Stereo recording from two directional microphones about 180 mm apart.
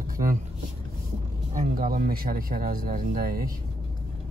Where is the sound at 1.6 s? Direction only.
50° right (ahead or behind).